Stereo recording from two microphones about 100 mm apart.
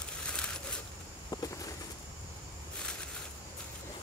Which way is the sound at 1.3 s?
35° left (ahead or behind).